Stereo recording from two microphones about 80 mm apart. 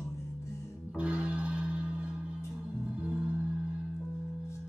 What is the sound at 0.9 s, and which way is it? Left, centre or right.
Music, centre.